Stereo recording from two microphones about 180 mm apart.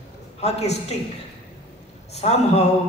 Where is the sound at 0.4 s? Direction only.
35° left (ahead or behind).